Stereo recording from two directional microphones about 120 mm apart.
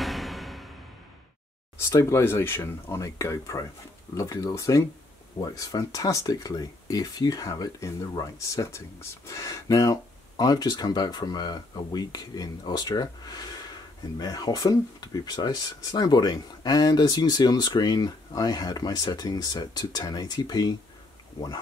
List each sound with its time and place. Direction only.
0.0 s music: centre (ahead or behind)
1.8 s speech: 20° left (ahead or behind)